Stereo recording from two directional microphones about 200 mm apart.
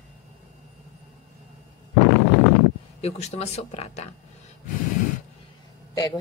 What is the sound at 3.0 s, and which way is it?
Speech, 30° left (ahead or behind).